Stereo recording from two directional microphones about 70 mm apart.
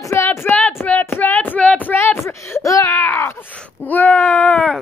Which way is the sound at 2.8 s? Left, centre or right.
Left.